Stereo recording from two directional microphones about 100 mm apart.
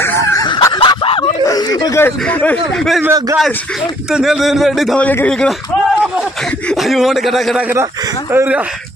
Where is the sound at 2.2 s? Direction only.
15° left (ahead or behind).